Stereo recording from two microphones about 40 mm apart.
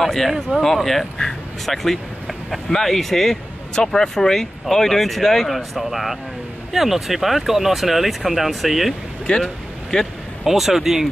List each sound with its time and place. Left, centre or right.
0.0 s speech: centre
1.1 s speech: centre
1.8 s speech: centre
5.6 s speech: centre
9.4 s vehicle: centre
10.4 s speech: centre